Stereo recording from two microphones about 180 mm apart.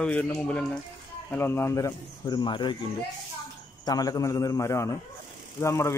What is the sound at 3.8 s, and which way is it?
A man's voice, 20° left (ahead or behind).